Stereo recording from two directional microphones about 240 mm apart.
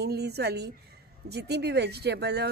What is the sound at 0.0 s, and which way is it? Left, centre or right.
Speech, right.